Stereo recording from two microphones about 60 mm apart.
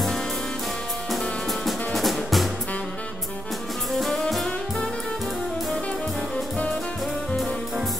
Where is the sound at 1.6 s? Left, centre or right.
Centre.